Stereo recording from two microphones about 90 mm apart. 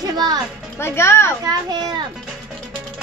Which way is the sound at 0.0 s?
45° right (ahead or behind).